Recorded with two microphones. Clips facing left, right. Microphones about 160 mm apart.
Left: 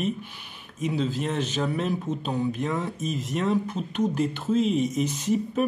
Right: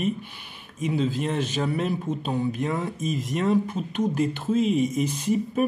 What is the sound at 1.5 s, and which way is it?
Speech, 5° right (ahead or behind).